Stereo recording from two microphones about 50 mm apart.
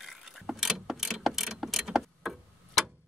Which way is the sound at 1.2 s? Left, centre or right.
Centre.